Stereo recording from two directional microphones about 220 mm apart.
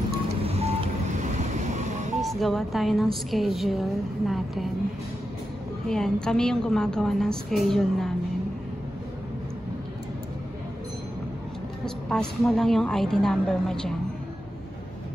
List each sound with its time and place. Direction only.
0.4 s vehicle: 25° right (ahead or behind)
2.2 s a woman's voice: centre (ahead or behind)
5.9 s a woman's voice: 5° left (ahead or behind)
11.8 s a woman's voice: 5° left (ahead or behind)